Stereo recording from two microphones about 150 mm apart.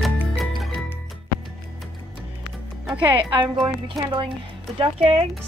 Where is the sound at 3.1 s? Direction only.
35° right (ahead or behind).